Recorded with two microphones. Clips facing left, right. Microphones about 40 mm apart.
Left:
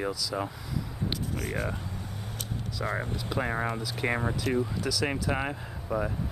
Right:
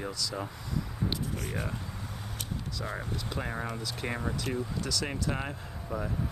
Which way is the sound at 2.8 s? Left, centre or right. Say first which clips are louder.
Left 7 dB; left.